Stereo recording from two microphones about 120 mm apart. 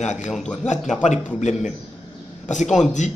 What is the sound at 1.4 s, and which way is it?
Speech, 75° left (ahead or behind).